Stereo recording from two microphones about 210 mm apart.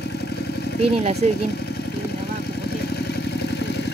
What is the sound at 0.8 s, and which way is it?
Speech, 30° right (ahead or behind).